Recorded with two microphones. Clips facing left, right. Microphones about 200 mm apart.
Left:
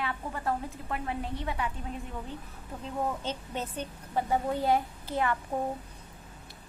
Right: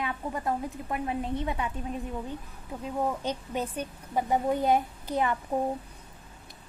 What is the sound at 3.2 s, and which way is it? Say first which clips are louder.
A woman's voice: right 4 dB; 10° right (ahead or behind).